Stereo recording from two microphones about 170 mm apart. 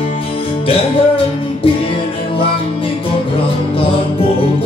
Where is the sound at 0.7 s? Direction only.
35° left (ahead or behind).